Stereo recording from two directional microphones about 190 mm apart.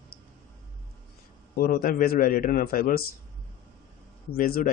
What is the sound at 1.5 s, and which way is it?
A man's voice, 50° left (ahead or behind).